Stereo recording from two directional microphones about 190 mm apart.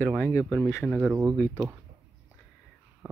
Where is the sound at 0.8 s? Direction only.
Centre (ahead or behind).